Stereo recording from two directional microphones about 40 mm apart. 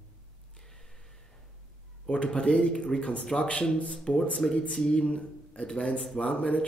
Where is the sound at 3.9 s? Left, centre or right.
Centre.